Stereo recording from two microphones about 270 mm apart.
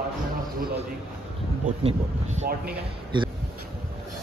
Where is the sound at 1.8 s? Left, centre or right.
Right.